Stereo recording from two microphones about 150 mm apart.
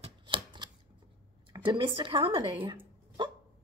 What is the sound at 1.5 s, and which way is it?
A woman's voice, 30° right (ahead or behind).